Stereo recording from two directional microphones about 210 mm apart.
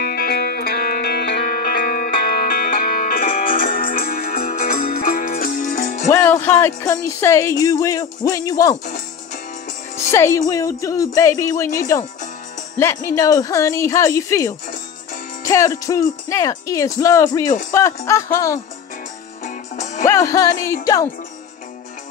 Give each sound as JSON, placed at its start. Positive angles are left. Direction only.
{"t": 0.0, "sound": "music", "side_deg": 45}
{"t": 6.0, "sound": "speech", "side_deg": 15}
{"t": 8.8, "sound": "music", "side_deg": 40}
{"t": 9.9, "sound": "speech", "side_deg": 15}
{"t": 19.4, "sound": "music", "side_deg": 35}
{"t": 20.1, "sound": "speech", "side_deg": 15}